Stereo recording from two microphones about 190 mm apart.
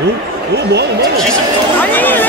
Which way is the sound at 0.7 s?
60° right (ahead or behind).